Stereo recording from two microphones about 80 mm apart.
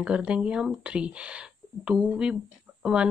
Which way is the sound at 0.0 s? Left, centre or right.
Centre.